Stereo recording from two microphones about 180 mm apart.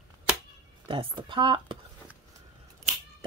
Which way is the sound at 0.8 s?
30° right (ahead or behind).